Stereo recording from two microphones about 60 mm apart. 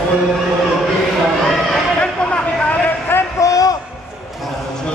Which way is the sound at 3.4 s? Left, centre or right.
Left.